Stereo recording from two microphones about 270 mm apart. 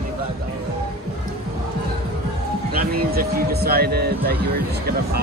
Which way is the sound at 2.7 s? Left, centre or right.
Right.